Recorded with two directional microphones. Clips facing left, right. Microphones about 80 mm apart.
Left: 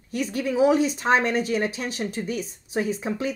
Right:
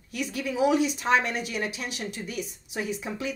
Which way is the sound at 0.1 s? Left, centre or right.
Left.